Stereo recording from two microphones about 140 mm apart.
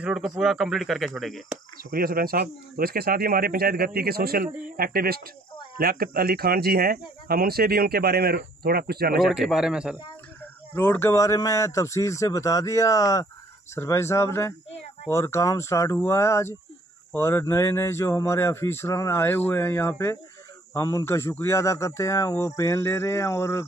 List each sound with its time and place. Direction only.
0.0 s speech: 5° right (ahead or behind)
1.9 s speech: 90° right
9.1 s speech: centre (ahead or behind)
10.7 s a man's voice: 15° left (ahead or behind)